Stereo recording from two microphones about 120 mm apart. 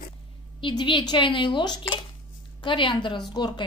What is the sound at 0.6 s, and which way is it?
A woman's voice, 45° left (ahead or behind).